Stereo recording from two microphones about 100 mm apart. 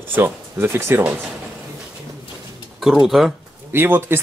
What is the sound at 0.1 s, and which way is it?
Speech, 25° right (ahead or behind).